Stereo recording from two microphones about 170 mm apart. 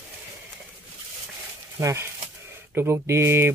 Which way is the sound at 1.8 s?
15° right (ahead or behind).